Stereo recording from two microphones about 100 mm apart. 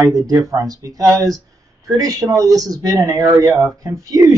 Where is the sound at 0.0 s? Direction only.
35° right (ahead or behind).